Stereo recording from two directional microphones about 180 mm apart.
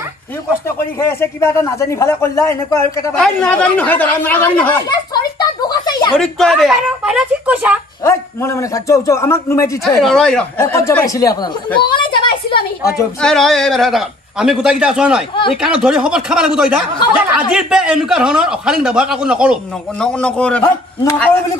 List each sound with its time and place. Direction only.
0.9 s speech: 15° left (ahead or behind)
4.8 s a sound: 20° left (ahead or behind)
6.1 s a man's voice: centre (ahead or behind)
8.0 s speech: 15° left (ahead or behind)
9.8 s a man's voice: 5° left (ahead or behind)
10.6 s speech: 15° left (ahead or behind)
13.2 s a man's voice: centre (ahead or behind)